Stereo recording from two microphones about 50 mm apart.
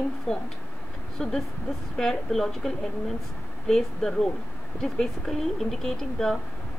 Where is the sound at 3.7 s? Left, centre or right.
Centre.